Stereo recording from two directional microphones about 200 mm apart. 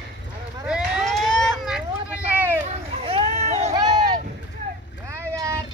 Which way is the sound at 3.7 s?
20° right (ahead or behind).